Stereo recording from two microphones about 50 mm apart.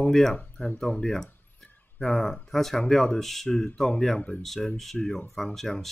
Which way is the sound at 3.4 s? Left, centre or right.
Centre.